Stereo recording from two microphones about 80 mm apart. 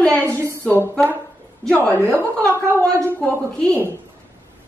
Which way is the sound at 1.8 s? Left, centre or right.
Right.